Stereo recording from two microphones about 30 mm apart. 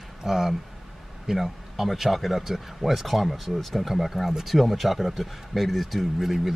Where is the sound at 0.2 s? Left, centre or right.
Centre.